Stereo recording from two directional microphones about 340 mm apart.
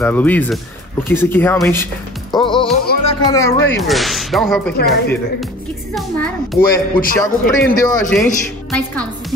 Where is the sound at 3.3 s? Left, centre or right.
Centre.